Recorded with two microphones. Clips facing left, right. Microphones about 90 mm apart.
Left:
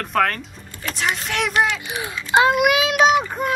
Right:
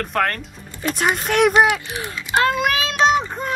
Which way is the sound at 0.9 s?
50° right (ahead or behind).